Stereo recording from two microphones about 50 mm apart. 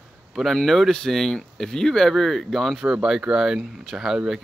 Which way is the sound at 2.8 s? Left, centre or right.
Centre.